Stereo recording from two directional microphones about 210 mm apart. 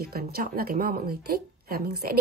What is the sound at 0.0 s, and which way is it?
A woman's voice, 45° right (ahead or behind).